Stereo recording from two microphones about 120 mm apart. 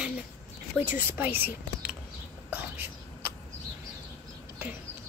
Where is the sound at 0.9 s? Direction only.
15° right (ahead or behind).